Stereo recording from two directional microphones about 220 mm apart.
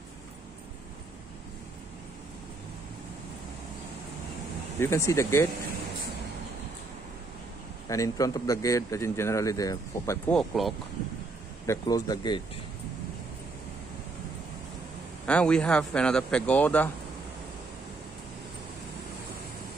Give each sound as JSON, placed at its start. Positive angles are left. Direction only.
{"t": 4.7, "sound": "speech", "side_deg": 10}
{"t": 7.9, "sound": "speech", "side_deg": 15}
{"t": 11.6, "sound": "speech", "side_deg": 15}
{"t": 15.2, "sound": "speech", "side_deg": 5}